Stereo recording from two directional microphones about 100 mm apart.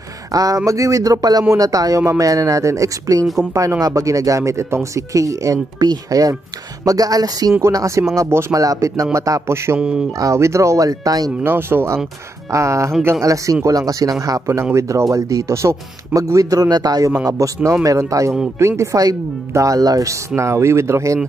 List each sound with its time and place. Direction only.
0.3 s speech: 35° right (ahead or behind)
9.8 s speech: 10° right (ahead or behind)
10.1 s speech: 30° right (ahead or behind)
11.4 s speech: 20° right (ahead or behind)